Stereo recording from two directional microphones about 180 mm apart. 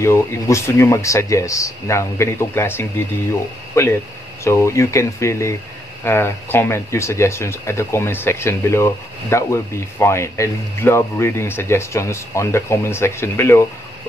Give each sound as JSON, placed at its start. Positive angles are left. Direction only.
{"t": 0.0, "sound": "speech", "side_deg": 15}